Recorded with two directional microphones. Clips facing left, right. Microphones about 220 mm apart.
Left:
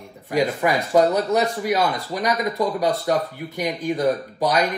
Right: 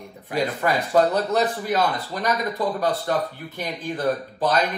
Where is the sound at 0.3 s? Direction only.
15° left (ahead or behind).